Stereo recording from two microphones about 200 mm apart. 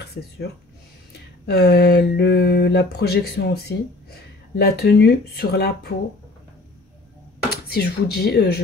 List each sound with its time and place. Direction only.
0.0 s speech: 55° left (ahead or behind)
7.6 s speech: 50° left (ahead or behind)